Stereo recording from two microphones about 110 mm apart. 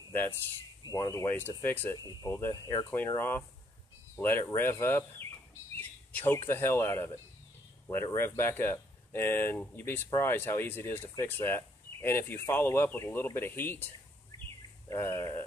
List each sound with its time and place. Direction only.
0.1 s a sound: 20° left (ahead or behind)
0.8 s speech: 30° left (ahead or behind)
3.2 s speech: 20° left (ahead or behind)